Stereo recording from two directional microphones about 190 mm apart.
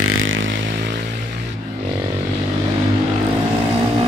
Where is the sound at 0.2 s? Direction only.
85° right.